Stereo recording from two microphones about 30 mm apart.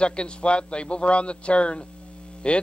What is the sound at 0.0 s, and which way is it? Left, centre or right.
Speech, left.